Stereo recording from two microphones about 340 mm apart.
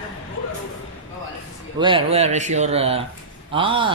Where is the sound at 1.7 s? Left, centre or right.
Centre.